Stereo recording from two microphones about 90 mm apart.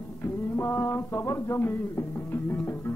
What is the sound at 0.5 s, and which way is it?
Music, 30° left (ahead or behind).